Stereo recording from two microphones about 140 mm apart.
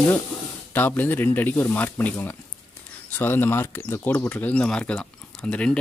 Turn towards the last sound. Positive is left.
turn(degrees=5)  # may be behind; listen again after turning